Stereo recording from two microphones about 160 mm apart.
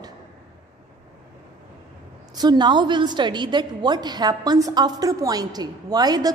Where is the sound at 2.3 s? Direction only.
25° right (ahead or behind).